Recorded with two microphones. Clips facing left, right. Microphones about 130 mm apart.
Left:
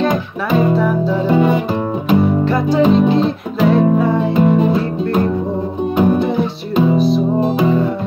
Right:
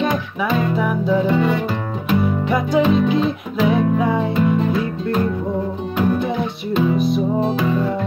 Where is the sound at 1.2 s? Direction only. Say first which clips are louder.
Left 4 dB; 30° left (ahead or behind).